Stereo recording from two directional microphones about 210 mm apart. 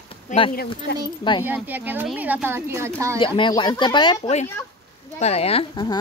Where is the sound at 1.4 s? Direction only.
10° right (ahead or behind).